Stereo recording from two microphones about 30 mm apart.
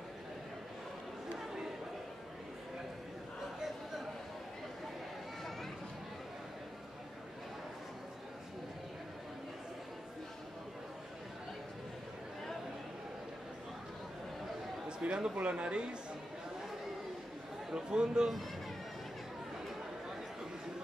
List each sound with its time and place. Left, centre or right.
14.9 s a man's voice: right
17.7 s a man's voice: right